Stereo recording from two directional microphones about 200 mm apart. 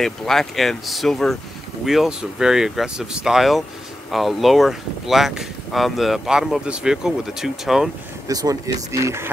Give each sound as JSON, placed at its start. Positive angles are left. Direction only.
{"t": 0.0, "sound": "speech", "side_deg": 0}
{"t": 8.3, "sound": "speech", "side_deg": -20}